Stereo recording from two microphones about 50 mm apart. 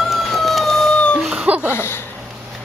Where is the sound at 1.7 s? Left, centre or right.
Left.